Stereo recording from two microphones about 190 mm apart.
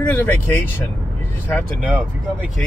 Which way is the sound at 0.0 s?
10° left (ahead or behind).